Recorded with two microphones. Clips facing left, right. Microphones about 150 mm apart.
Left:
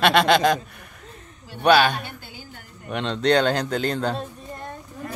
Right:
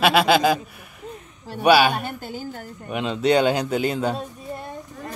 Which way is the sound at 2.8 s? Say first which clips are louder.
Right 1 dB; 5° right (ahead or behind).